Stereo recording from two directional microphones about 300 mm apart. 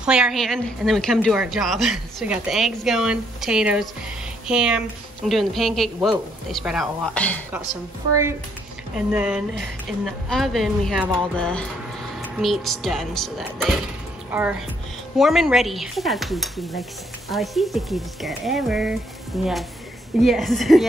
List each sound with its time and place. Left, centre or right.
0.0 s a woman's voice: centre
8.9 s a woman's voice: centre